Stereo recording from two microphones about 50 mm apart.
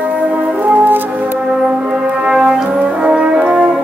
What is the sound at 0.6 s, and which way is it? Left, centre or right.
Music, right.